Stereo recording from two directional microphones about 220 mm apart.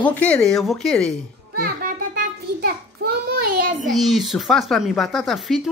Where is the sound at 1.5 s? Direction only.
40° right (ahead or behind).